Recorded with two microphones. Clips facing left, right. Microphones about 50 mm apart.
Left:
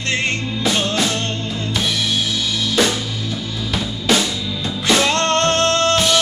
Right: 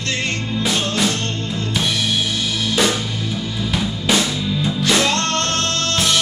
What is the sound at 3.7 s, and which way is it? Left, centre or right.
Music, centre.